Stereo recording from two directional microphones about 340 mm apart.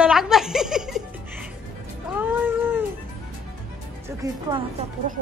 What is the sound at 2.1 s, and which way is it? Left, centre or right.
Cat, centre.